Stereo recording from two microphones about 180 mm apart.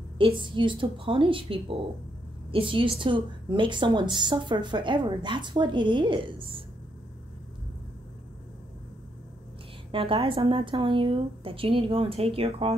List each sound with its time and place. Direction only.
0.2 s a woman's voice: 25° right (ahead or behind)
9.8 s a woman's voice: 30° right (ahead or behind)